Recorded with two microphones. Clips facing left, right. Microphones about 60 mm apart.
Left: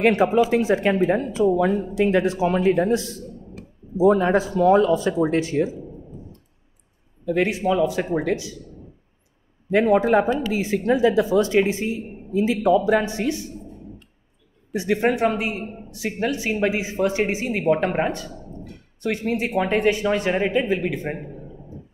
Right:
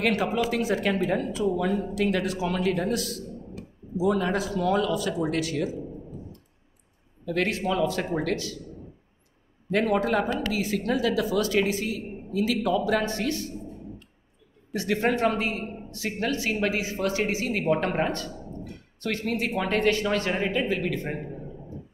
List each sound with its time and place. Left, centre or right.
0.0 s speech: left
7.2 s speech: centre
9.7 s speech: centre
14.7 s speech: centre